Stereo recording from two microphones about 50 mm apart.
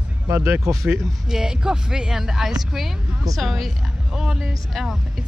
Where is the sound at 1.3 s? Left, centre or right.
Centre.